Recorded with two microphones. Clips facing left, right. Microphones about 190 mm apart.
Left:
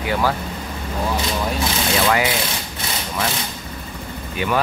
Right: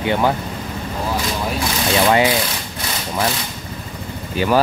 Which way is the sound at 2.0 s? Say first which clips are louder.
Right 5 dB; 25° right (ahead or behind).